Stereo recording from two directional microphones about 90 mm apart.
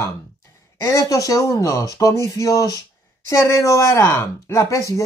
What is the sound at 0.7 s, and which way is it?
Speech, 35° left (ahead or behind).